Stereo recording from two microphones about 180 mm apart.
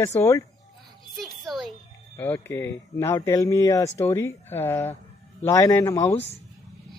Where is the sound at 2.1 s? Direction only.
10° left (ahead or behind).